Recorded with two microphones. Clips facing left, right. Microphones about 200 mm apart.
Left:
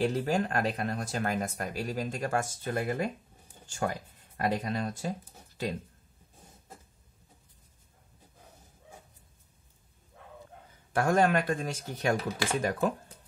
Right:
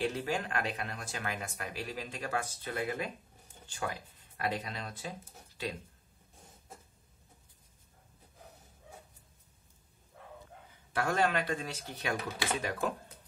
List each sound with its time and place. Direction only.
0.1 s speech: 40° left (ahead or behind)
10.9 s speech: 45° left (ahead or behind)